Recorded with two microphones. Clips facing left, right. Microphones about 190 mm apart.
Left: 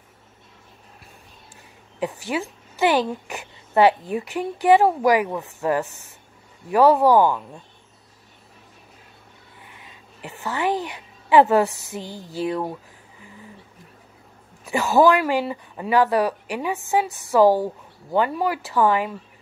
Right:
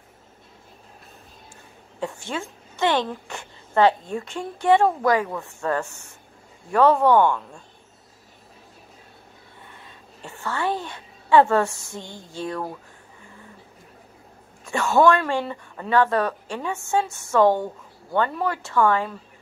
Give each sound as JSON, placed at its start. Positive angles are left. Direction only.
{"t": 2.0, "sound": "a woman's voice", "side_deg": 15}
{"t": 6.7, "sound": "a woman's voice", "side_deg": 5}
{"t": 9.7, "sound": "a sound", "side_deg": 15}
{"t": 12.1, "sound": "a sound", "side_deg": 35}
{"t": 12.4, "sound": "speech", "side_deg": 20}
{"t": 15.2, "sound": "a woman's voice", "side_deg": 15}